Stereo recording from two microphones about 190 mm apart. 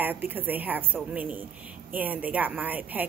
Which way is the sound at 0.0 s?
10° right (ahead or behind).